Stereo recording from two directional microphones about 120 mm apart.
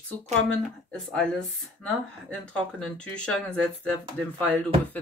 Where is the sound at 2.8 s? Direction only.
10° left (ahead or behind).